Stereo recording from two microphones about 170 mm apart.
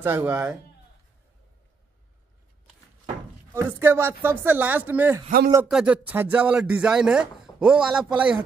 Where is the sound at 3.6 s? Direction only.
15° right (ahead or behind).